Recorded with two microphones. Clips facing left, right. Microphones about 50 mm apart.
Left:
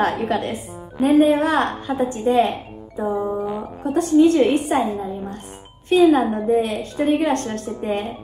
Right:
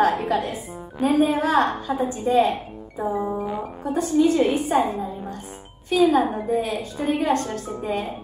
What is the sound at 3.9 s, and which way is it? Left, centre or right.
Speech, left.